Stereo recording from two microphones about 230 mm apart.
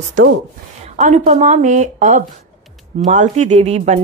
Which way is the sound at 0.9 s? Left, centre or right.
Right.